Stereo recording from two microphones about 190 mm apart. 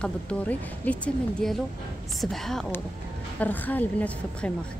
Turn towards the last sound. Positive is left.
turn(degrees=5)  # may be behind; listen again after turning